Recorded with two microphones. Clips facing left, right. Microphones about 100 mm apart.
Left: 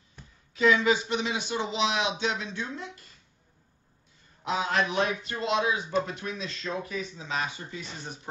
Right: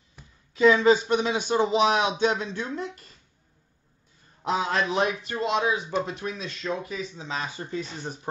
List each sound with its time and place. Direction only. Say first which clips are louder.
0.6 s speech: right 5 dB; 35° right (ahead or behind)
4.5 s speech: right 2 dB; 35° right (ahead or behind)